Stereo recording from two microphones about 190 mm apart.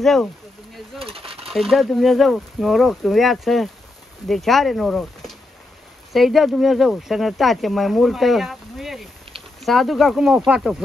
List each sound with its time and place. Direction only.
0.0 s speech: centre (ahead or behind)
0.9 s coin: 30° right (ahead or behind)
1.5 s speech: centre (ahead or behind)